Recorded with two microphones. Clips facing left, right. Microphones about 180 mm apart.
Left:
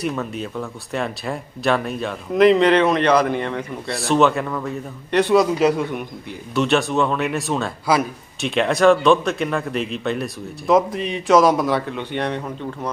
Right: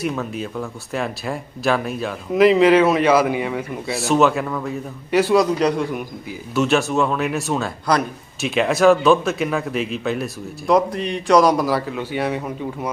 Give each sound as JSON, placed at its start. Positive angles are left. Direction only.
{"t": 0.0, "sound": "a man's voice", "side_deg": 0}